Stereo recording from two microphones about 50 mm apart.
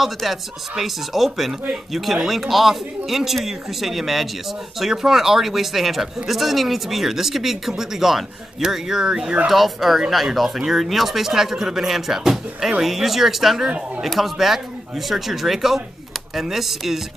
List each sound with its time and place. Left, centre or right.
0.0 s speech: centre